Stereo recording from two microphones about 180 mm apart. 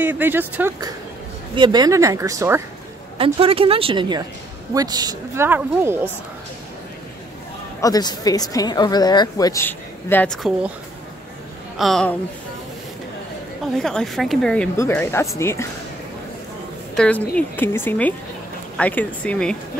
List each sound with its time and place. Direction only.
0.0 s speech: 10° right (ahead or behind)
1.5 s speech: 25° right (ahead or behind)
3.2 s a woman's voice: 30° right (ahead or behind); by 5.9 s 15° right (ahead or behind)
7.8 s a woman's voice: 20° left (ahead or behind); by 10.5 s 5° left (ahead or behind)
11.8 s a woman's voice: 5° left (ahead or behind)
13.7 s a woman's voice: centre (ahead or behind)
16.9 s speech: 5° left (ahead or behind)